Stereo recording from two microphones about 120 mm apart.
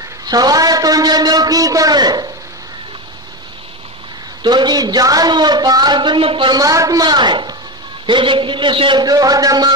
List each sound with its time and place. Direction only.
0.2 s a sound: 35° right (ahead or behind)
4.4 s a woman's voice: 40° right (ahead or behind)
6.5 s a woman's voice: 30° right (ahead or behind)